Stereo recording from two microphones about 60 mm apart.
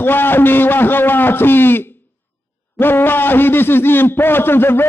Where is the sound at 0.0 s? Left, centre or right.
Left.